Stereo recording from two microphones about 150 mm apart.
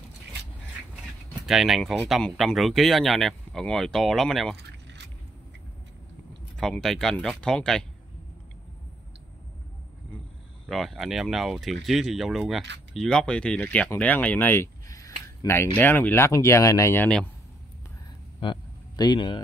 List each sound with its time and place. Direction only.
1.4 s speech: centre (ahead or behind)
6.6 s speech: 5° left (ahead or behind)
10.7 s speech: centre (ahead or behind)
18.4 s a sound: 30° left (ahead or behind)